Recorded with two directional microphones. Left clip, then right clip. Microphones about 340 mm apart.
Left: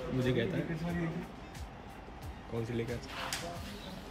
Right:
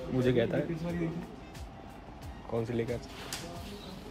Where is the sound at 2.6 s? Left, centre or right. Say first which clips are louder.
Right 4 dB; centre.